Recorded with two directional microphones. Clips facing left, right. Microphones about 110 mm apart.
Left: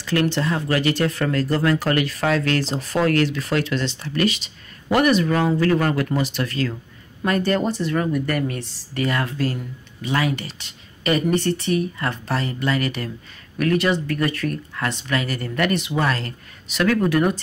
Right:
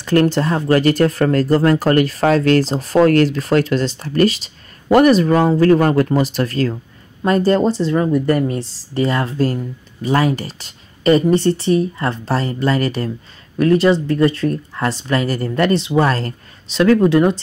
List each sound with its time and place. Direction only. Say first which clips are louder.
0.0 s speech: right 6 dB; 45° right (ahead or behind); by 17.4 s 25° right (ahead or behind)